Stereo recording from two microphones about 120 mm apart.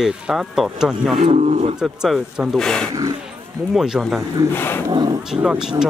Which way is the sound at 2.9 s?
30° right (ahead or behind).